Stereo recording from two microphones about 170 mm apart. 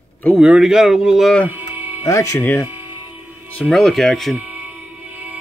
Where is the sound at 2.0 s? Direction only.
15° left (ahead or behind).